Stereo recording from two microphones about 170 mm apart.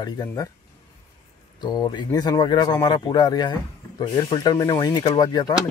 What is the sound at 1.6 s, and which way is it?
Speech, 25° left (ahead or behind).